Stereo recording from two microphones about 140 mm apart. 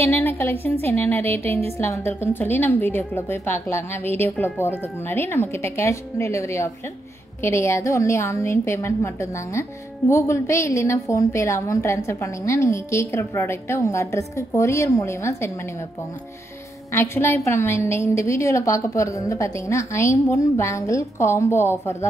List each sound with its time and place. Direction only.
0.0 s a woman's voice: 15° left (ahead or behind)
16.9 s a woman's voice: 20° left (ahead or behind)